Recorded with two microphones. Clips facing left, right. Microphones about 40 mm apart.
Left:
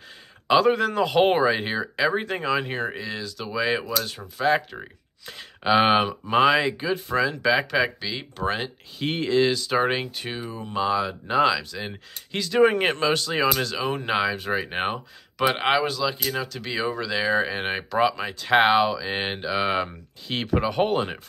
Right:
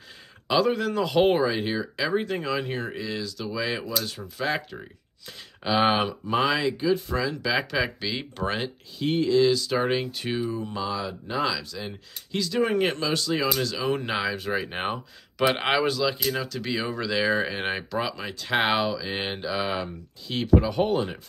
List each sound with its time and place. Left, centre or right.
0.5 s speech: left
7.5 s speech: centre
8.0 s speech: centre
9.0 s speech: left
10.2 s speech: centre
10.5 s speech: left
13.8 s speech: centre
15.4 s speech: centre
17.9 s speech: left